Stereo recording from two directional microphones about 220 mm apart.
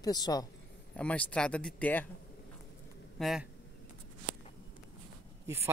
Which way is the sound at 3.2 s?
Centre (ahead or behind).